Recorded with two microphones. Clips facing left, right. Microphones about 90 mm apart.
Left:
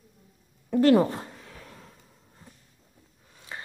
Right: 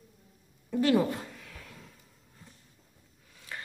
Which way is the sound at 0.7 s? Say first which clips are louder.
Left 6 dB; 45° left (ahead or behind).